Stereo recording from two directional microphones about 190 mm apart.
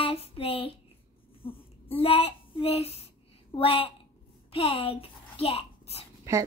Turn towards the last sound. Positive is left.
turn(degrees=-15)  # may be behind; listen again after turning